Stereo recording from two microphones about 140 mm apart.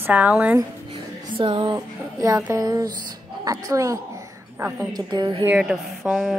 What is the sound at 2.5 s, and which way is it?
A woman's voice, 25° right (ahead or behind).